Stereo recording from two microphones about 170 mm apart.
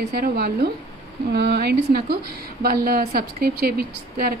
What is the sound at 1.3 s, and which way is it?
Speech, 75° right (ahead or behind).